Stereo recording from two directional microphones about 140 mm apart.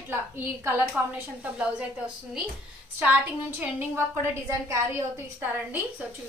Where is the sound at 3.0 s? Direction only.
10° right (ahead or behind).